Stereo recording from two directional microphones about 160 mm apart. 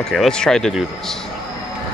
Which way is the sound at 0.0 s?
Centre (ahead or behind).